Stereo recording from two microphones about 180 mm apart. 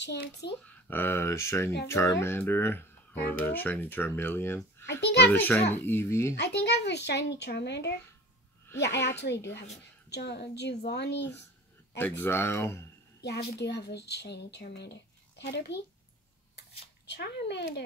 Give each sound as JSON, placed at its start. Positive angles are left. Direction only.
{"t": 0.0, "sound": "a child's voice", "side_deg": 75}
{"t": 0.7, "sound": "speech", "side_deg": 10}
{"t": 6.3, "sound": "a child's voice", "side_deg": 70}
{"t": 12.2, "sound": "speech", "side_deg": 15}
{"t": 13.2, "sound": "a child's voice", "side_deg": 65}
{"t": 17.0, "sound": "a child's voice", "side_deg": 70}